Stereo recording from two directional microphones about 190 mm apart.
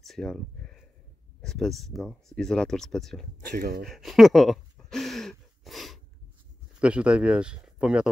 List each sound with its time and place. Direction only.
0.0 s speech: 5° left (ahead or behind)
3.3 s speech: 50° right (ahead or behind)
3.8 s a sound: centre (ahead or behind)
6.8 s speech: 5° right (ahead or behind)